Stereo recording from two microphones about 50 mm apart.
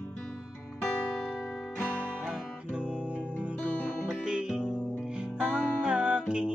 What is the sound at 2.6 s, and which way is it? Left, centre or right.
Guitar, right.